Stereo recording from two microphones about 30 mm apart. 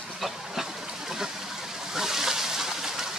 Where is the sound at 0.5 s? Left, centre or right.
Centre.